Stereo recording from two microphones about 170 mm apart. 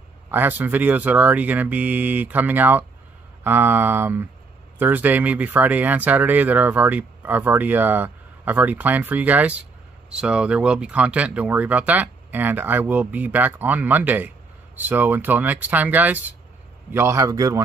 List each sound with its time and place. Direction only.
0.3 s speech: 10° right (ahead or behind)